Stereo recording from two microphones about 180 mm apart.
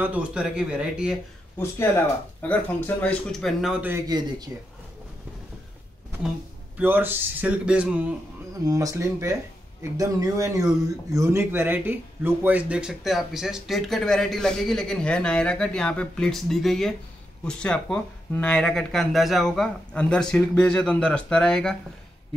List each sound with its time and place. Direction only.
0.0 s speech: 5° right (ahead or behind)
2.4 s speech: 10° left (ahead or behind)
3.9 s speech: 20° right (ahead or behind)
6.8 s a man's voice: 10° right (ahead or behind)
8.5 s a man's voice: 20° right (ahead or behind); by 21.7 s 5° left (ahead or behind)